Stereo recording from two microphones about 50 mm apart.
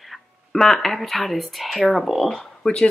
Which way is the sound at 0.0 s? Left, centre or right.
Centre.